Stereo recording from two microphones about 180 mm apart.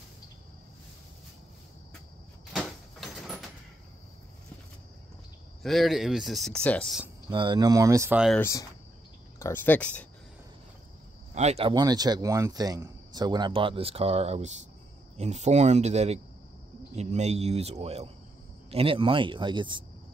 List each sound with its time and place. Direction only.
2.5 s sliding door: centre (ahead or behind)
5.6 s speech: centre (ahead or behind)
7.2 s speech: 25° right (ahead or behind)
8.4 s speech: 15° left (ahead or behind)
11.3 s a man's voice: 35° right (ahead or behind)
11.7 s a man's voice: 20° right (ahead or behind)